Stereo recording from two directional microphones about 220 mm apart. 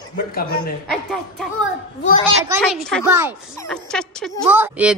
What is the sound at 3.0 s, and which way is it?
Speech, 10° right (ahead or behind).